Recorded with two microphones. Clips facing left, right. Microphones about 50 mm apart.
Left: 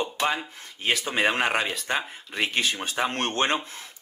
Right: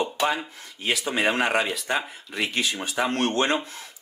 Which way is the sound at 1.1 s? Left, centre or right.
Left.